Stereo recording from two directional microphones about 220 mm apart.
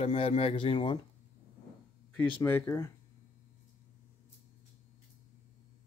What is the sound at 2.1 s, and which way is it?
Speech, 10° left (ahead or behind).